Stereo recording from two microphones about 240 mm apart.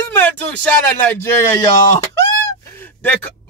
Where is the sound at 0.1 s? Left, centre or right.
Centre.